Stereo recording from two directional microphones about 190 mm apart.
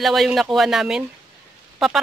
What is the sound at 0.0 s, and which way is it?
Speech, centre (ahead or behind).